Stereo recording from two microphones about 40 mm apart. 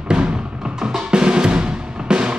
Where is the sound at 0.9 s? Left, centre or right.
Right.